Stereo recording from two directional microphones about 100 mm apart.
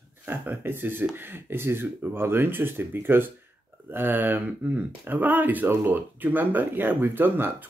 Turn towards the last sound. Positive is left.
turn(degrees=-20)  # may be behind; listen again after turning